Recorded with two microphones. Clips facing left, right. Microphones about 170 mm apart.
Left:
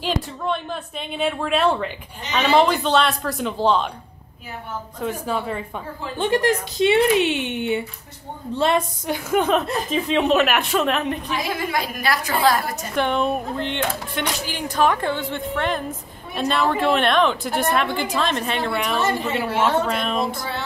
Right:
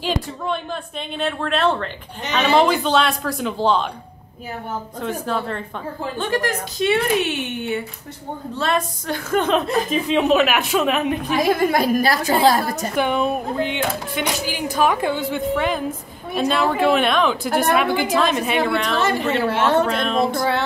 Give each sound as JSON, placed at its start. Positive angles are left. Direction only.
{"t": 0.0, "sound": "a woman's voice", "side_deg": 0}
{"t": 5.0, "sound": "a woman's voice", "side_deg": 5}
{"t": 6.1, "sound": "a woman's voice", "side_deg": 20}
{"t": 9.8, "sound": "a woman's voice", "side_deg": -5}
{"t": 11.2, "sound": "a woman's voice", "side_deg": -50}
{"t": 12.9, "sound": "a woman's voice", "side_deg": -5}
{"t": 18.7, "sound": "a woman's voice", "side_deg": 5}
{"t": 20.3, "sound": "music", "side_deg": -70}